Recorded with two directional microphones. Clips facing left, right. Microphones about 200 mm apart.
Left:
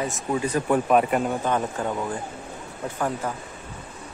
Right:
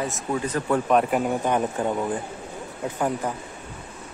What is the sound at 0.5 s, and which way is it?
Speech, 15° left (ahead or behind).